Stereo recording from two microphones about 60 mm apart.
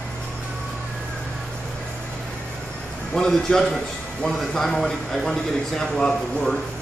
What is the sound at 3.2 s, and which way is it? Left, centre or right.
A man's voice, centre.